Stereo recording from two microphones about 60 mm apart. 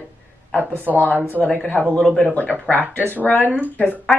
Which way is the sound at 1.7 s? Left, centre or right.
Left.